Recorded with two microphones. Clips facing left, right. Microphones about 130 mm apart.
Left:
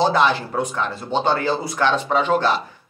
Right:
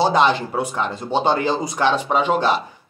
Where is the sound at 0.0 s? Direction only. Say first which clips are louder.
Right 1 dB; 15° right (ahead or behind).